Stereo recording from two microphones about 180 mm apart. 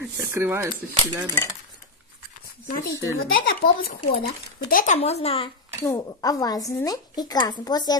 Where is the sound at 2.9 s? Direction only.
90° left.